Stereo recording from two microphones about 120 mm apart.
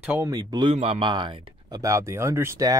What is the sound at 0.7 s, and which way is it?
Speech, 55° right (ahead or behind).